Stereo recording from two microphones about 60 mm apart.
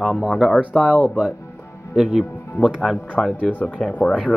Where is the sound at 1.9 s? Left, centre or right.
Centre.